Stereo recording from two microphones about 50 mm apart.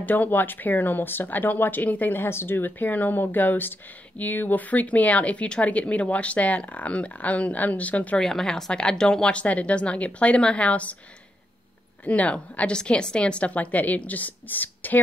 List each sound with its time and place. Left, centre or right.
0.0 s speech: left
2.2 s speech: left
8.2 s speech: centre; by 11.0 s left
12.0 s speech: left